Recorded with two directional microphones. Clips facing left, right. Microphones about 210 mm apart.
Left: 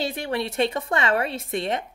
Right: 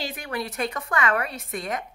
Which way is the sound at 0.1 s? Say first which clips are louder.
Left 4 dB; 25° left (ahead or behind).